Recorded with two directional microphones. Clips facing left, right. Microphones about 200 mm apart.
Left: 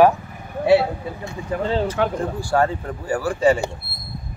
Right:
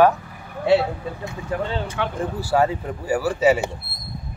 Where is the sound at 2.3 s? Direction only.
5° right (ahead or behind).